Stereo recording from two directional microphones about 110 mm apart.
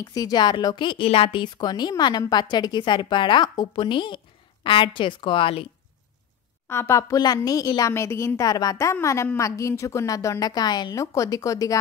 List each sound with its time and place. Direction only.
0.0 s speech: 35° left (ahead or behind); by 5.7 s 55° left (ahead or behind)
6.7 s a woman's voice: 25° left (ahead or behind)